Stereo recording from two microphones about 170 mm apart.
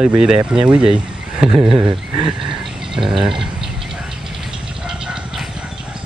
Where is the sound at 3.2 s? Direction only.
Centre (ahead or behind).